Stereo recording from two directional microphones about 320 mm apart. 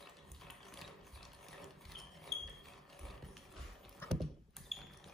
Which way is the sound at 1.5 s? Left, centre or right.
Centre.